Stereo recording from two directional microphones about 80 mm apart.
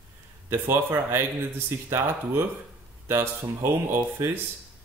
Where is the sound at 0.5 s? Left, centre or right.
Right.